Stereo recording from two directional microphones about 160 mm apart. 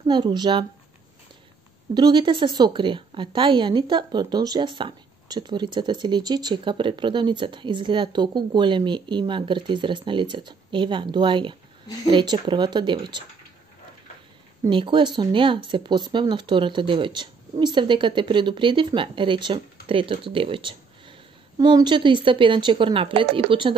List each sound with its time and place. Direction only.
0.0 s a woman's voice: 30° right (ahead or behind)
2.0 s a woman's voice: 25° right (ahead or behind)
14.7 s speech: 30° right (ahead or behind)